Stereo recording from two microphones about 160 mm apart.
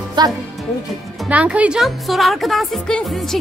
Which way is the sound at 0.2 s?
25° right (ahead or behind).